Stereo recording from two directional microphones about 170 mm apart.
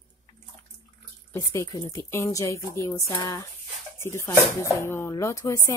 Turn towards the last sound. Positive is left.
turn(degrees=15)  # may be behind; listen again after turning